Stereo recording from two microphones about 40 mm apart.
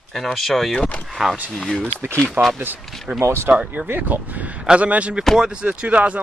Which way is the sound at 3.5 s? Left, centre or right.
Right.